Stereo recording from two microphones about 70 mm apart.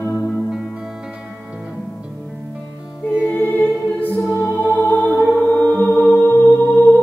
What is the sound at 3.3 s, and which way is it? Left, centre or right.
Music, left.